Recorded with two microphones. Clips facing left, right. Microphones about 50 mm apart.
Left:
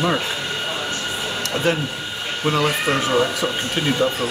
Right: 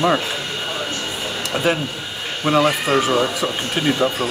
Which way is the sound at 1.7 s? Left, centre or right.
Centre.